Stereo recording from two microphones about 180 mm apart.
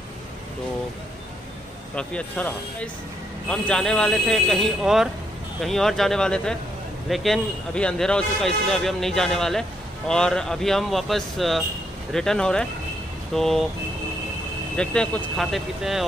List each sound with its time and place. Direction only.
2.0 s speech: 5° left (ahead or behind)
14.8 s speech: 5° left (ahead or behind)